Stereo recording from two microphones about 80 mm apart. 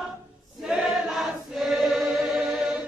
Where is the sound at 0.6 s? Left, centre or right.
Centre.